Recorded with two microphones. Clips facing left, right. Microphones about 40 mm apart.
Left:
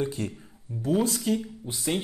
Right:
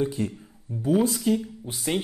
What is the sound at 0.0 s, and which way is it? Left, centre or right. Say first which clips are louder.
Speech: right 3 dB; centre.